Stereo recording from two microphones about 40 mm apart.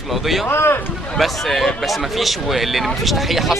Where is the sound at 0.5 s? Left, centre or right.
Left.